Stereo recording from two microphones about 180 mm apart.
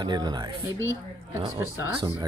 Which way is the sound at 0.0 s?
25° right (ahead or behind).